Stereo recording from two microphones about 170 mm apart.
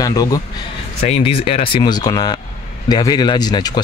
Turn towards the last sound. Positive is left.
turn(degrees=25)  # may be behind; listen again after turning